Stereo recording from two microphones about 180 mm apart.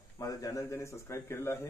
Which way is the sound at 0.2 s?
20° left (ahead or behind).